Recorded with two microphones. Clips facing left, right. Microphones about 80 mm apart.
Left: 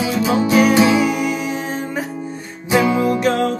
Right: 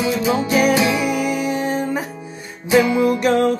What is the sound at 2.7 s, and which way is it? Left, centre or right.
Music, left.